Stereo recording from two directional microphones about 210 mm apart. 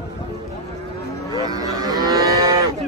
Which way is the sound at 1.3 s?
20° right (ahead or behind).